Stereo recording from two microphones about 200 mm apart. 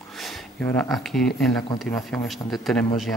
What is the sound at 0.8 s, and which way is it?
Speech, centre (ahead or behind).